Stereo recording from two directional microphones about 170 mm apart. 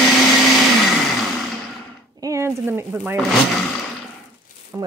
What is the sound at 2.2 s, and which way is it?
Speech, 15° right (ahead or behind).